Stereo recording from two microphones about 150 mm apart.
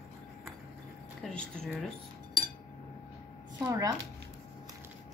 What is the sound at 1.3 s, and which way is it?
Speech, 5° left (ahead or behind).